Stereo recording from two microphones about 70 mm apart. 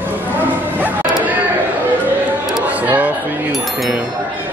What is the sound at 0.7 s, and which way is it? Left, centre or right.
Bow-wow, right.